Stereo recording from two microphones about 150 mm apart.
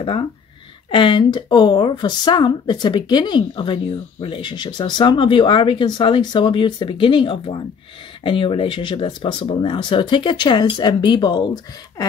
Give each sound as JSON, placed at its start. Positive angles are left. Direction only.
{"t": 0.8, "sound": "speech", "side_deg": 35}